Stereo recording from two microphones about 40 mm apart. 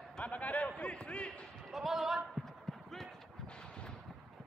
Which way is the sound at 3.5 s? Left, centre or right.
Left.